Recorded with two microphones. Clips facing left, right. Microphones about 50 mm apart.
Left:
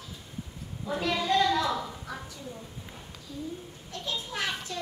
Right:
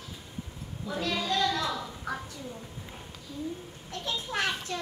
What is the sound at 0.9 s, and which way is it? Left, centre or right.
Speech, left.